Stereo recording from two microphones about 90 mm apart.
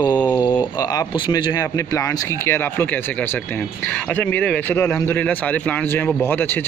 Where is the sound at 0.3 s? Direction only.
60° left (ahead or behind).